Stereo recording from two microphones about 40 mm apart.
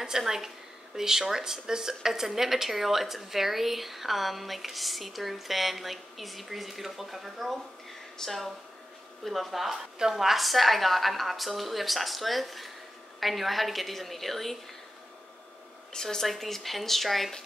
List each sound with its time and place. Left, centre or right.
0.0 s a woman's voice: centre
15.9 s speech: centre